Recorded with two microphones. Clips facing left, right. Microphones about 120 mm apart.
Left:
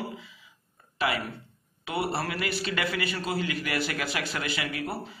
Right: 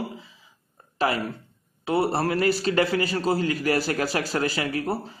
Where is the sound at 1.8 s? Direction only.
40° right (ahead or behind).